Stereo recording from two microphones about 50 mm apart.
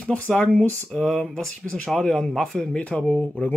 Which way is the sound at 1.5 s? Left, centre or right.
Left.